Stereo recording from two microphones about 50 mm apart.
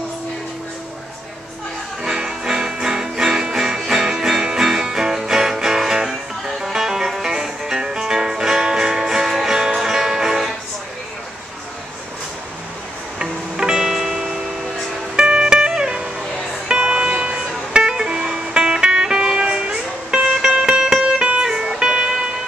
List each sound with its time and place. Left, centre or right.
2.0 s music: centre
13.2 s music: centre